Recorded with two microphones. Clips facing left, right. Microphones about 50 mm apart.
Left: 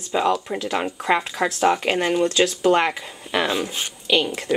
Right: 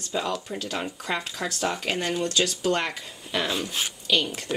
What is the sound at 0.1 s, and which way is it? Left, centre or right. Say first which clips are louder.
Speech: left 8 dB; left.